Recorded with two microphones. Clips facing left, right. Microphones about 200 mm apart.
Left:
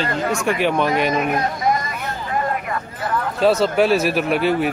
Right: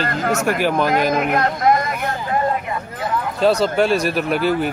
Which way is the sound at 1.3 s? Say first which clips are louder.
Right 3 dB; 60° right (ahead or behind).